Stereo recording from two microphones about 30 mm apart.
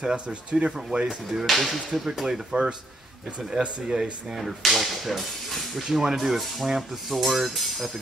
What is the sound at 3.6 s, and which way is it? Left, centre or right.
Whip, centre.